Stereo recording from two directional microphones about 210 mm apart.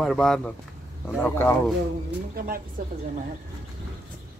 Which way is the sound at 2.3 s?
45° right (ahead or behind).